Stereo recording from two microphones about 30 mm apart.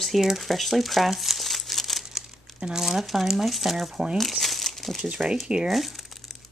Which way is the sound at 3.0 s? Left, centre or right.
Centre.